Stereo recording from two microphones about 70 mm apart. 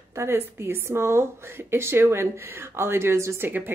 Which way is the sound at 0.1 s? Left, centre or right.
Right.